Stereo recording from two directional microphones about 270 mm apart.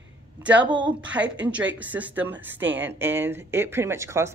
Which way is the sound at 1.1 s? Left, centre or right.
Centre.